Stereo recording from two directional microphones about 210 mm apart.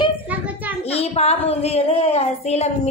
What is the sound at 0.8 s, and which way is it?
A child's voice, 30° left (ahead or behind).